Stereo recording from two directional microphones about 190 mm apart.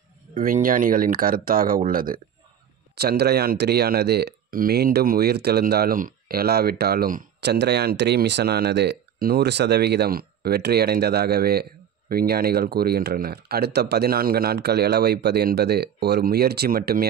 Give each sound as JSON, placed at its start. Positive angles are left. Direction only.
{"t": 0.4, "sound": "speech", "side_deg": -45}